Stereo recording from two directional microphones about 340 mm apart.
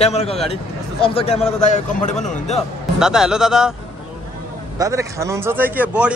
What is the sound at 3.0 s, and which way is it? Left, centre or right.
Speech, centre.